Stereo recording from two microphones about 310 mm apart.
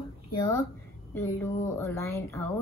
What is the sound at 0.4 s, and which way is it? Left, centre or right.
Speech, centre.